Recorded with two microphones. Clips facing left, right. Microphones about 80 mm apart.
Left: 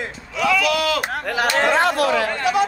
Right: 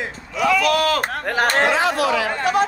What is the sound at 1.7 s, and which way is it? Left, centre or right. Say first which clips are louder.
Speech: left 1 dB; left.